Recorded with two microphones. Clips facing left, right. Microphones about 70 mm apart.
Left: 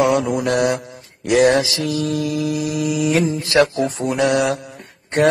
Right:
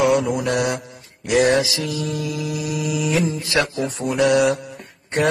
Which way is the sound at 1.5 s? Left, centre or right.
Left.